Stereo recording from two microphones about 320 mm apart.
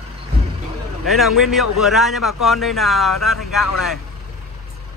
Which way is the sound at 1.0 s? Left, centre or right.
Centre.